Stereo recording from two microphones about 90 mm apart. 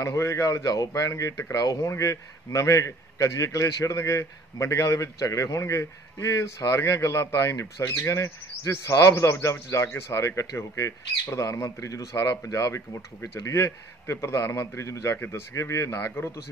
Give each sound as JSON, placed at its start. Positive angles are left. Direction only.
{"t": 0.0, "sound": "speech", "side_deg": 35}
{"t": 15.1, "sound": "speech", "side_deg": 25}